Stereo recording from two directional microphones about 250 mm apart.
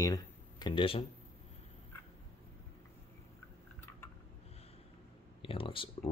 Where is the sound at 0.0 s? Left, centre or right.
Centre.